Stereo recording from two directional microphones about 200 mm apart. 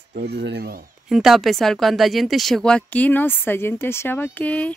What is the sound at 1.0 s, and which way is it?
Speech, centre (ahead or behind).